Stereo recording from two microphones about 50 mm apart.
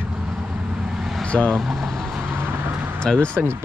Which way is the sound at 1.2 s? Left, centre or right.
Left.